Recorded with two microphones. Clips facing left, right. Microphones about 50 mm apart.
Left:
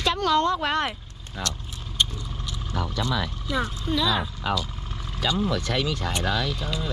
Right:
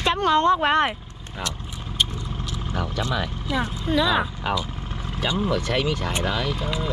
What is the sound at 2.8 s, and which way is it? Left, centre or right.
Speech, right.